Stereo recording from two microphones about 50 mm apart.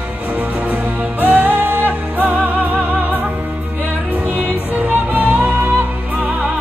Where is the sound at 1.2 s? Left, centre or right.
Right.